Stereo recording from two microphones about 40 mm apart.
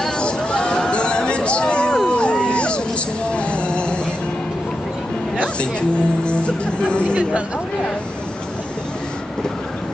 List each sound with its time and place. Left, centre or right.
0.2 s a sound: left
3.3 s music: left
5.6 s music: left